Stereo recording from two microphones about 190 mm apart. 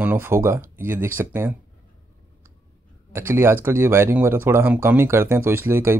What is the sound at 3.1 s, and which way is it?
Speech, 15° right (ahead or behind).